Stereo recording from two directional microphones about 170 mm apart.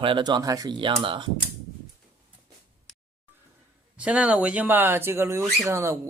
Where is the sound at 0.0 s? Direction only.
30° right (ahead or behind).